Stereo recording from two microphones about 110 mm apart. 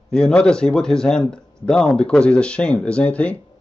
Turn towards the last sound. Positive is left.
turn(degrees=10)  # may be behind; listen again after turning